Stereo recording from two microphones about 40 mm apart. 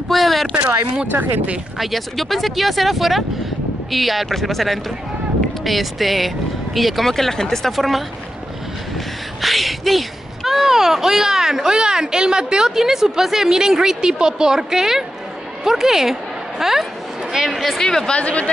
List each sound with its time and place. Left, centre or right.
0.1 s a sound: centre
1.8 s a woman's voice: centre
17.2 s a sound: centre
17.5 s speech: centre
17.7 s speech: centre
18.1 s speech: left